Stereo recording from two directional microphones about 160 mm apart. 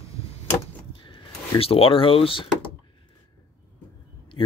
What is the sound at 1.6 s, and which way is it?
Speech, 35° left (ahead or behind).